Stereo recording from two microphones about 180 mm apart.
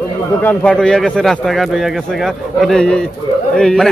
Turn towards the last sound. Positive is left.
turn(degrees=5)  # may be behind; listen again after turning